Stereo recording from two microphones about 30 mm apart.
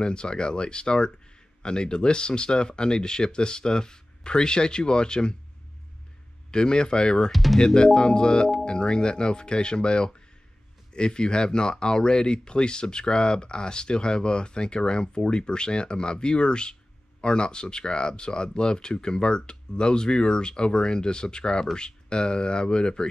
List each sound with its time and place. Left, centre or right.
0.0 s speech: left
6.5 s speech: left